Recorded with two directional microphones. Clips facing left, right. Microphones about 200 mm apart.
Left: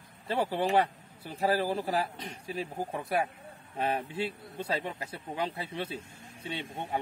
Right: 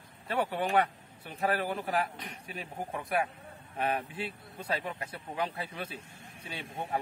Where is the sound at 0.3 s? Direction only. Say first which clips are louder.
Left 2 dB; 30° left (ahead or behind).